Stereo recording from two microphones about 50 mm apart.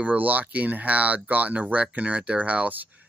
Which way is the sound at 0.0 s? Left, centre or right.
Right.